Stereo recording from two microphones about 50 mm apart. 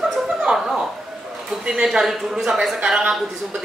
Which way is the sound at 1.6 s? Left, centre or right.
Centre.